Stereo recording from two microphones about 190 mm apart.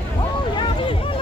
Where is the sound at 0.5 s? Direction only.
25° left (ahead or behind).